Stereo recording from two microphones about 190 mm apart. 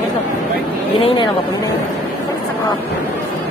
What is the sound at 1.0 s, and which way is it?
Speech, 25° left (ahead or behind).